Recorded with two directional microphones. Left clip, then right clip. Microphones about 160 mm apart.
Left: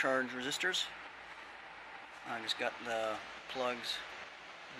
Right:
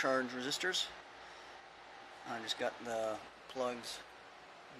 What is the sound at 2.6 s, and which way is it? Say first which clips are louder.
Speech: even; 20° right (ahead or behind).